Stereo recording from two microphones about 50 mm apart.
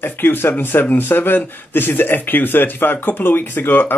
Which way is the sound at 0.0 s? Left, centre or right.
Left.